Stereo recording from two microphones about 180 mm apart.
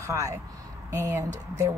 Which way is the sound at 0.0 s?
15° right (ahead or behind).